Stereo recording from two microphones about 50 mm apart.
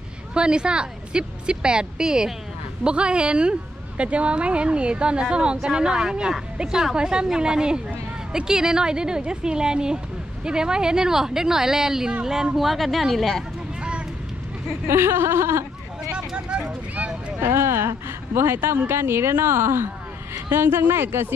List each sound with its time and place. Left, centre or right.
0.3 s a woman's voice: centre
14.9 s speech: right
16.1 s a sound: right
17.4 s a woman's voice: right